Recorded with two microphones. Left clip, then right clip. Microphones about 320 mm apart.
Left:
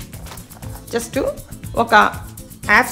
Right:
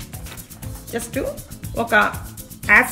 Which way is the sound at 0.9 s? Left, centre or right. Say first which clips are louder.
Left 5 dB; left.